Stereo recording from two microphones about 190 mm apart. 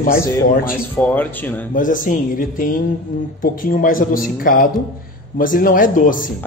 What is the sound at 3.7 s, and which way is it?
Speech, 45° left (ahead or behind).